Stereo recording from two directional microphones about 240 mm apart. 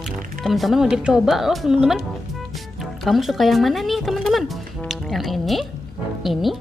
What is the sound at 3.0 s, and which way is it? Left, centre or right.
Music, centre.